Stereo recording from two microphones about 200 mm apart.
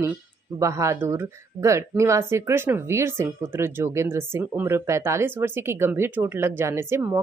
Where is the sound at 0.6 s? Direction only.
15° right (ahead or behind).